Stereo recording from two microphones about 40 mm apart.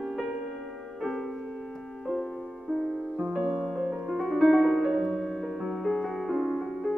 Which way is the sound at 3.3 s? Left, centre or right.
Right.